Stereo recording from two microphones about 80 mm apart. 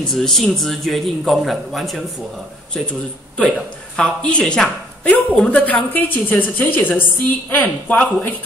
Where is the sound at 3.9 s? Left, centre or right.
Centre.